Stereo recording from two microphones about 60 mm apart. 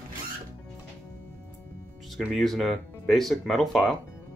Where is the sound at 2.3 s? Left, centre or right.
Centre.